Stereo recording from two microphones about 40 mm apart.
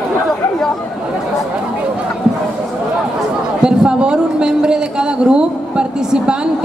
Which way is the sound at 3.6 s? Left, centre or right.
Right.